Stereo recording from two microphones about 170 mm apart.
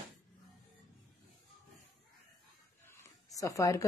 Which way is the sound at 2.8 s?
15° left (ahead or behind).